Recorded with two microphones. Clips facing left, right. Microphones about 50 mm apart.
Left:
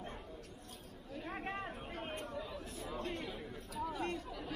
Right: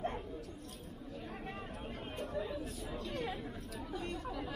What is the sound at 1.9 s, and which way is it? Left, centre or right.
Chatter, centre.